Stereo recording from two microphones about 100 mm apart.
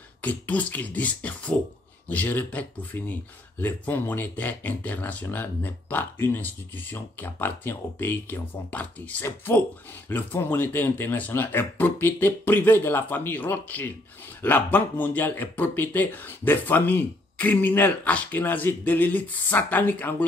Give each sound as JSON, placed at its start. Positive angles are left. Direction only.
{"t": 0.2, "sound": "speech", "side_deg": 15}